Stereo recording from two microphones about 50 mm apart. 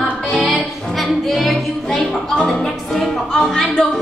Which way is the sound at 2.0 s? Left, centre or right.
Centre.